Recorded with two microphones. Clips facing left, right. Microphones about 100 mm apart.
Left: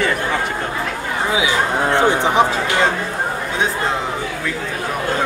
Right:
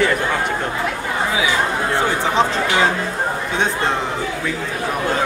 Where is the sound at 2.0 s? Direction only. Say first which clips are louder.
Left 3 dB; 20° left (ahead or behind).